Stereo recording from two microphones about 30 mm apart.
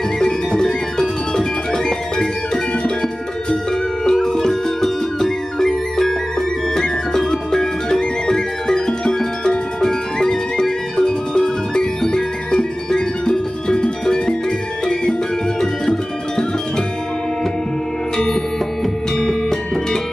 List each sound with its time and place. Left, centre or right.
0.2 s music: centre
15.6 s music: centre
18.1 s music: centre